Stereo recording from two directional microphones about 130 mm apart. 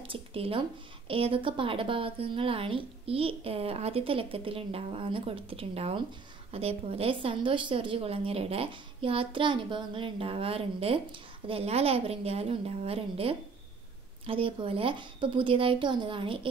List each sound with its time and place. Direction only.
0.0 s a woman's voice: 45° right (ahead or behind)